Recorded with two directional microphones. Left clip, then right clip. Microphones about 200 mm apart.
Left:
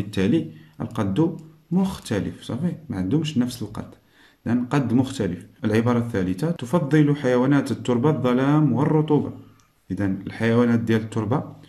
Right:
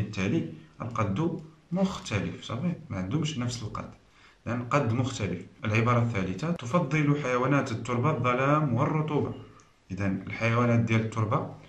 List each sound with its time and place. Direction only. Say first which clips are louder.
0.1 s a man's voice: left 8 dB; 45° left (ahead or behind)